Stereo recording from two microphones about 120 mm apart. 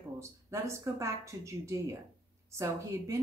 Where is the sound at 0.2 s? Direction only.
25° right (ahead or behind).